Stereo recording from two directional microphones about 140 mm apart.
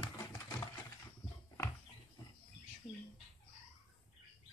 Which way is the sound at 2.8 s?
40° left (ahead or behind).